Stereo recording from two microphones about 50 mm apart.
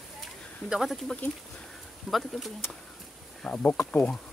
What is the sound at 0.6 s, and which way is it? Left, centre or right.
Speech, right.